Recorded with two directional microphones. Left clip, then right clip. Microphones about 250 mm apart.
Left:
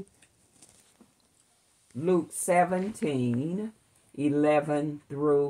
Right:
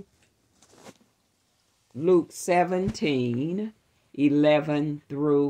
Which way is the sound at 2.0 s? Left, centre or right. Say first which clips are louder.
Right 5 dB; right.